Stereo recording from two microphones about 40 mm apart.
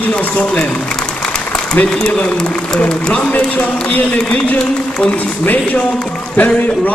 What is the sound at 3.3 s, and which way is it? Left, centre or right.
Speech, left.